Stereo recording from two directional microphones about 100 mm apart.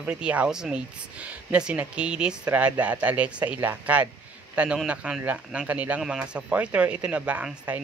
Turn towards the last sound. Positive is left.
turn(degrees=-10)  # may be behind; listen again after turning